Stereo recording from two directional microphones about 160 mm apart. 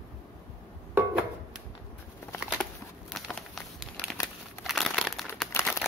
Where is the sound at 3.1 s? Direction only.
Centre (ahead or behind).